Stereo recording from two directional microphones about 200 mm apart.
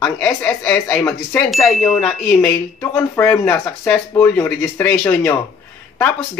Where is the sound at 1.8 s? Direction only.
10° left (ahead or behind).